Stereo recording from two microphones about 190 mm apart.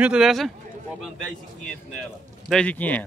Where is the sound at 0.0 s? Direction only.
5° right (ahead or behind).